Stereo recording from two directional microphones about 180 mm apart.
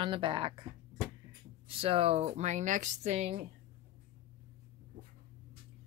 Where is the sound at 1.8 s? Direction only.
35° right (ahead or behind).